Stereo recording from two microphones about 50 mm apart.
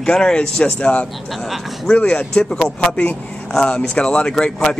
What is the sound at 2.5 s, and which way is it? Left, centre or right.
Speech, centre.